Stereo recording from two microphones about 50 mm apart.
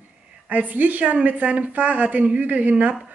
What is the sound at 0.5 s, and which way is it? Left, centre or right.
A woman's voice, right.